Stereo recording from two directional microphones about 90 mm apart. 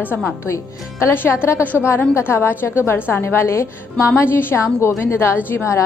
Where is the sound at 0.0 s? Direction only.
20° left (ahead or behind).